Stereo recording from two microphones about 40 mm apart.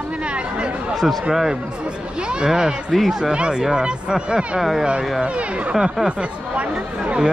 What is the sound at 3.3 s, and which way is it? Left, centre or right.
Speech, right.